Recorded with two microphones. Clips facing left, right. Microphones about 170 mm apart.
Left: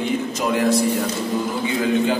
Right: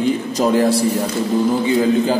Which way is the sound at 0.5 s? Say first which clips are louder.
Even; 30° right (ahead or behind).